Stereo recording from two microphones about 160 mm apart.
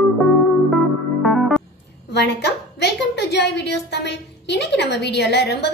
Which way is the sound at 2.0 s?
90° left.